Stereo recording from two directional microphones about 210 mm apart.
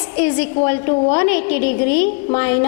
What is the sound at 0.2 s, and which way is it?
A woman's voice, 10° left (ahead or behind).